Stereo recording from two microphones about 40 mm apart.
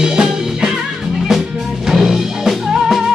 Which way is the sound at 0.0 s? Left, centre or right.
Centre.